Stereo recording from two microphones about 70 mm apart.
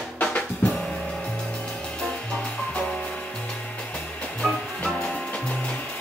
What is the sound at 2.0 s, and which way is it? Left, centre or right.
Music, centre.